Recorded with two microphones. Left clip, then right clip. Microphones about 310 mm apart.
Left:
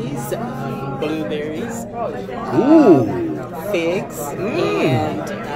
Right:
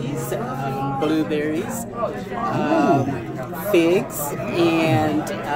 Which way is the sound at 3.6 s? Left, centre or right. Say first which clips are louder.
Right 3 dB; right.